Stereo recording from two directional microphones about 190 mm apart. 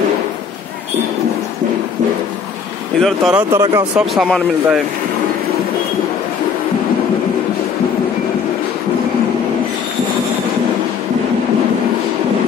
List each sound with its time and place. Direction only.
3.0 s speech: centre (ahead or behind)
3.5 s speech: 20° right (ahead or behind)
3.9 s speech: centre (ahead or behind)